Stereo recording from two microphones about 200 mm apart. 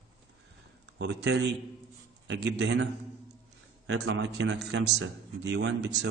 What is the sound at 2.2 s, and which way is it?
Speech, 75° right (ahead or behind).